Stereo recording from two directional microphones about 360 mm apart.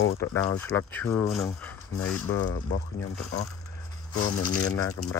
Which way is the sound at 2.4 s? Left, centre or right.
Left.